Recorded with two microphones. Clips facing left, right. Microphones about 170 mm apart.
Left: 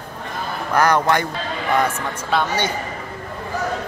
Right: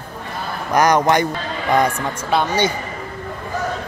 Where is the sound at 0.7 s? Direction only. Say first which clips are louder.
Right 2 dB; 15° right (ahead or behind).